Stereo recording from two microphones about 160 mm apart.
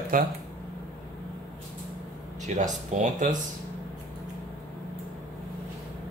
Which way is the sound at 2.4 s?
50° right (ahead or behind).